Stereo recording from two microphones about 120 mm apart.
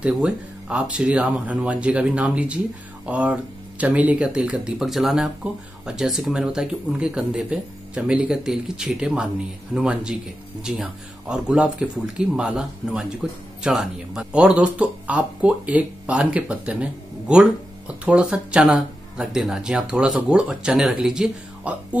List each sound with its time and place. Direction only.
0.0 s speech: 10° right (ahead or behind)